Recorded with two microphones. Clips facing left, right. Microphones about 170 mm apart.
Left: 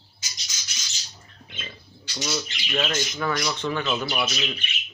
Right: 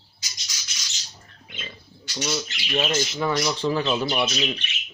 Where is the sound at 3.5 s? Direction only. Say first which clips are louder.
Right 3 dB; 30° right (ahead or behind).